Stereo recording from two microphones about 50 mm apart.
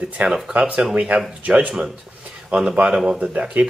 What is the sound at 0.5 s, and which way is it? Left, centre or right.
Speech, right.